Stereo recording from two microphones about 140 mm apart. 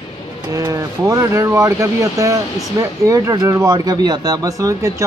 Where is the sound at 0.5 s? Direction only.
25° right (ahead or behind).